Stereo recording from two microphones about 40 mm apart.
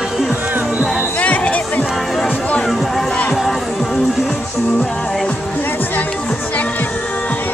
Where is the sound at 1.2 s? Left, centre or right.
Left.